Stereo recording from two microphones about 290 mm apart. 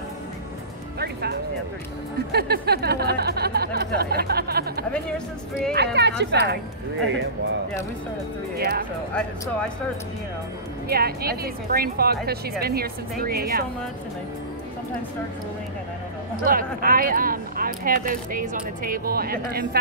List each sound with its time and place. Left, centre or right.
0.9 s speech: right
4.9 s speech: centre
5.9 s speech: right
8.5 s speech: right
10.9 s speech: right
16.4 s speech: right